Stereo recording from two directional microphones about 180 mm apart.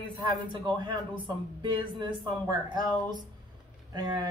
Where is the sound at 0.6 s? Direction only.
25° right (ahead or behind).